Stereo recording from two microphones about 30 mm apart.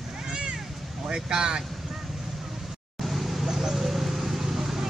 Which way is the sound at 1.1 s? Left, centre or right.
Right.